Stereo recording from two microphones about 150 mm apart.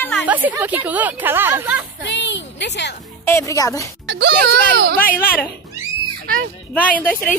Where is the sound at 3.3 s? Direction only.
20° left (ahead or behind).